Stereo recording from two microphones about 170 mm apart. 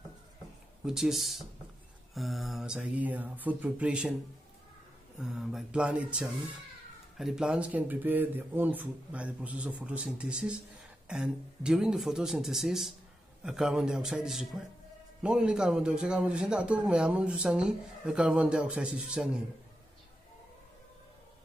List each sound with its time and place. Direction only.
0.8 s a man's voice: centre (ahead or behind)
5.2 s a man's voice: 5° right (ahead or behind)